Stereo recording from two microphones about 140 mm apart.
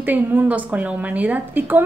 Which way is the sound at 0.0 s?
15° right (ahead or behind).